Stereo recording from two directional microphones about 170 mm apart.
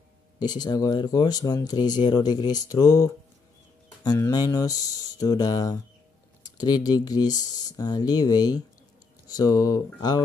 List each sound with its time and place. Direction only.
0.4 s speech: 25° left (ahead or behind)